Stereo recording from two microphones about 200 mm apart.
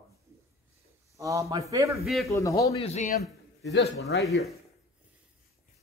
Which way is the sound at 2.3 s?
15° left (ahead or behind).